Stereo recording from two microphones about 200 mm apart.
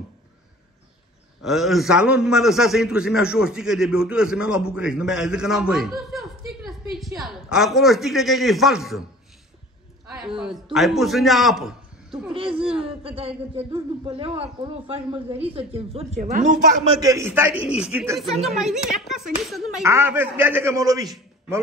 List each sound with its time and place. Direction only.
1.4 s a man's voice: centre (ahead or behind)
10.0 s a sound: 5° right (ahead or behind)
10.4 s a man's voice: centre (ahead or behind)
12.3 s speech: 25° right (ahead or behind)
17.0 s a man's voice: 15° right (ahead or behind)
19.8 s a man's voice: 15° right (ahead or behind)